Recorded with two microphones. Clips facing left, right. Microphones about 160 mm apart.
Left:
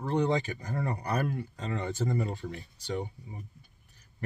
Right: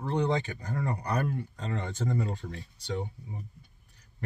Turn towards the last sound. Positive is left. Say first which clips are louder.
# even
turn(degrees=5)  # may be behind; listen again after turning